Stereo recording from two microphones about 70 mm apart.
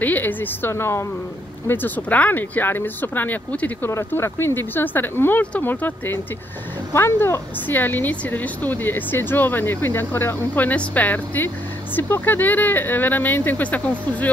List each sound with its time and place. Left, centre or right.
0.0 s speech: left
1.7 s speech: left
4.1 s speech: left
6.9 s speech: left
7.6 s speech: left